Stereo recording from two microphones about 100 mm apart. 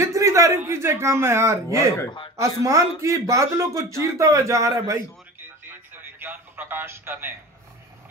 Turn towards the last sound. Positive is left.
turn(degrees=-20)  # may be behind; listen again after turning